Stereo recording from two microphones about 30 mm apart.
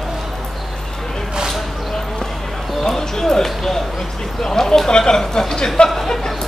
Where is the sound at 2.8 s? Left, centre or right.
Centre.